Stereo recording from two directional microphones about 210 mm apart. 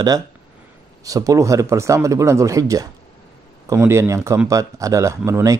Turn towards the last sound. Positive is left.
turn(degrees=-15)  # may be behind; listen again after turning